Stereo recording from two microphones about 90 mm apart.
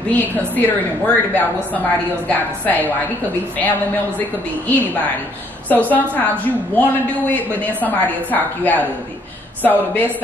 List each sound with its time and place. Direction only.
0.1 s a woman's voice: 20° left (ahead or behind)
5.7 s a woman's voice: 20° left (ahead or behind)